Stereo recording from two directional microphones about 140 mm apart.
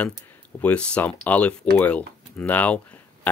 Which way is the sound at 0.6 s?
10° left (ahead or behind).